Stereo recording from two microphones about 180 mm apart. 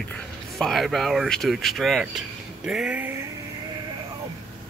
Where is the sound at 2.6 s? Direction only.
5° right (ahead or behind).